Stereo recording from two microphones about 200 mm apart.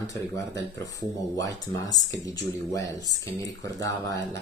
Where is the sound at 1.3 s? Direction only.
20° left (ahead or behind).